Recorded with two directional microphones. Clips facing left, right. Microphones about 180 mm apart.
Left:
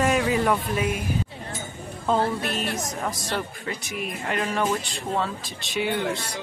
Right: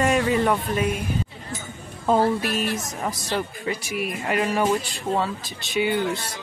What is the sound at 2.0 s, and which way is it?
Speech, 10° right (ahead or behind).